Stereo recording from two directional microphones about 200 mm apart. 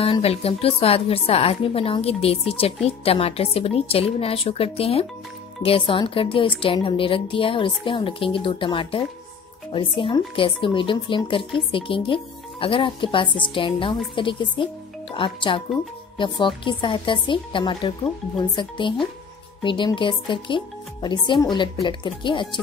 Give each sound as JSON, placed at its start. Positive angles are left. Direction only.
{"t": 0.0, "sound": "speech", "side_deg": 30}